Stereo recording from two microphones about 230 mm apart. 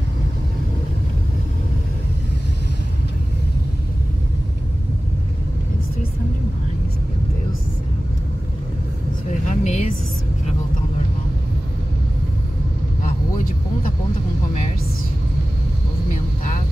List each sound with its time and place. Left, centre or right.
9.3 s vehicle: left
13.0 s vehicle: left